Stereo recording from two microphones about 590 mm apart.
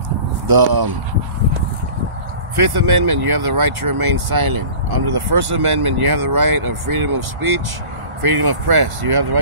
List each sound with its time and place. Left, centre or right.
0.5 s speech: right
2.5 s speech: right